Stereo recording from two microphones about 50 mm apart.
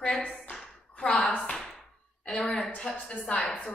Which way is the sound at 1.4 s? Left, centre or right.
Centre.